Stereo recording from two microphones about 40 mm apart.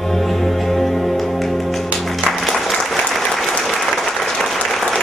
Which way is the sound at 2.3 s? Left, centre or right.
Centre.